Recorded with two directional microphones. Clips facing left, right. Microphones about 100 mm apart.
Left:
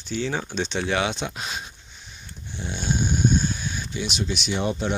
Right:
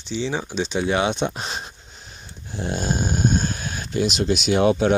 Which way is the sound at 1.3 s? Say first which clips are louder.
Right 3 dB; 35° right (ahead or behind).